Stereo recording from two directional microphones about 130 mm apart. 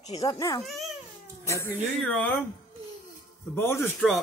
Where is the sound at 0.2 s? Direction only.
30° left (ahead or behind).